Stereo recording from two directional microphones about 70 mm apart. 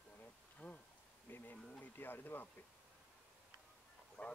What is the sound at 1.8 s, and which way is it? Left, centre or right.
Speech, left.